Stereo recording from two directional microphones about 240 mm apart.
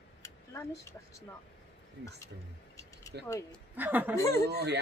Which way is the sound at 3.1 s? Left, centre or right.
Right.